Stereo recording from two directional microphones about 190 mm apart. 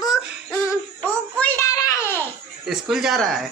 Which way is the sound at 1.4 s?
15° left (ahead or behind).